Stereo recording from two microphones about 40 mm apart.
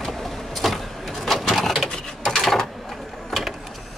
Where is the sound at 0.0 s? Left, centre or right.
Centre.